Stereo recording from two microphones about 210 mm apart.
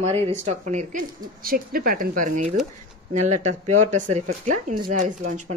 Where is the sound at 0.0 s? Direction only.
30° right (ahead or behind).